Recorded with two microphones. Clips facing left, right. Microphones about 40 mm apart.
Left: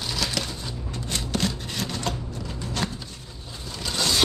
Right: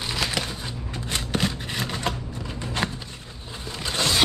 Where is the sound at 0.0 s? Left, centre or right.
Right.